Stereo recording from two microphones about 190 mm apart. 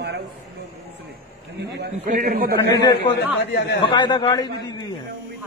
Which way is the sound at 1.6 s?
60° right (ahead or behind).